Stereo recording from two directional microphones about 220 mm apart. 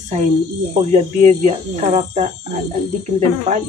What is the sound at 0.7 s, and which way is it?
Speech, 30° right (ahead or behind).